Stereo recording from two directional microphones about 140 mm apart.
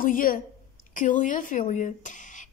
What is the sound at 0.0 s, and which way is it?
Speech, 80° left.